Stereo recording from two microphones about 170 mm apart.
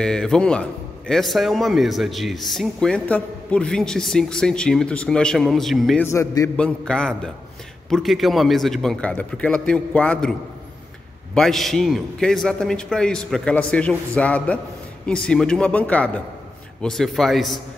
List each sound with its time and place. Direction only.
0.0 s a man's voice: 5° left (ahead or behind)
6.0 s a man's voice: 15° left (ahead or behind)
6.5 s a man's voice: 5° left (ahead or behind)
11.3 s a man's voice: centre (ahead or behind)